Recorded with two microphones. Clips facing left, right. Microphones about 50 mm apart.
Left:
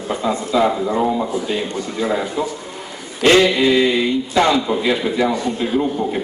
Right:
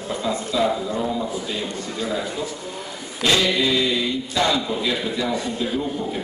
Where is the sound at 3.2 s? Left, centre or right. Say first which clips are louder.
Left 7 dB; left.